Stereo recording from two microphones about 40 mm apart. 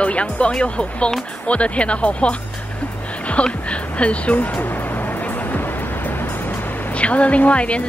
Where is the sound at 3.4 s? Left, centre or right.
Left.